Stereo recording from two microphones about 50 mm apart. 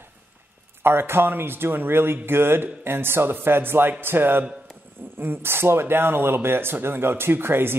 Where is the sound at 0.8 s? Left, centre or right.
Right.